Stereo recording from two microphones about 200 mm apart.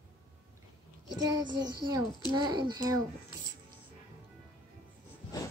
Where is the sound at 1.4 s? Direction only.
65° right (ahead or behind).